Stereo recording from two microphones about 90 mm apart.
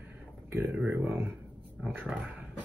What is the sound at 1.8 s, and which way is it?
Speech, 10° right (ahead or behind).